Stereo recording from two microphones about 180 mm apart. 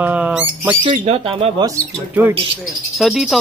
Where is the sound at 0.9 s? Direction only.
35° right (ahead or behind).